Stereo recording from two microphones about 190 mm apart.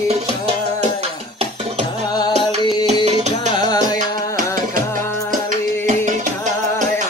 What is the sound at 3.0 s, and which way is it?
Music, 35° right (ahead or behind).